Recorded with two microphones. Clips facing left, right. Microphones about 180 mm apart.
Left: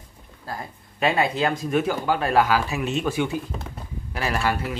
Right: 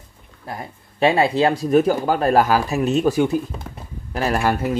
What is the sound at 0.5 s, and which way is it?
Speech, 25° right (ahead or behind).